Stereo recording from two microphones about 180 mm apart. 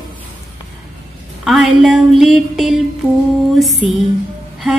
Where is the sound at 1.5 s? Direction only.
Centre (ahead or behind).